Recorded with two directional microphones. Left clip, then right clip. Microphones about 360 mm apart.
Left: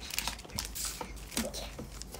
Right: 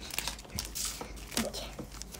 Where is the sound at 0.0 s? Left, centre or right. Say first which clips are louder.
Left 1 dB; centre.